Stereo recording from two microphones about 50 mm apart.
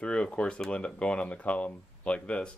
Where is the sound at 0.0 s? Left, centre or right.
Centre.